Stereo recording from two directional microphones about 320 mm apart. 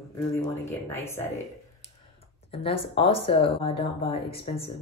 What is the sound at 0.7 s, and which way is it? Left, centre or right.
Speech, centre.